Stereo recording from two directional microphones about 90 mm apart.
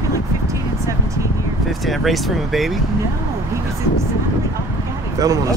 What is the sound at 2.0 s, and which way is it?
Speech, centre (ahead or behind).